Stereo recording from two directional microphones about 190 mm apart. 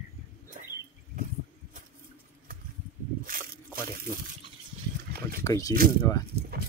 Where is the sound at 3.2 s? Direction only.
50° right (ahead or behind).